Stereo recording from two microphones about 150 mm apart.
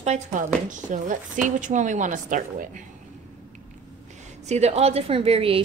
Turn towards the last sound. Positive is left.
turn(degrees=-40)  # may be behind; listen again after turning